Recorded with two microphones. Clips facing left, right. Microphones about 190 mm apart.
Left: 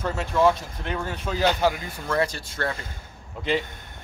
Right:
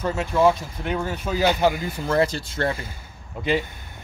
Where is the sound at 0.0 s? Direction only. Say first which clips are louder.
Right 2 dB; 5° right (ahead or behind).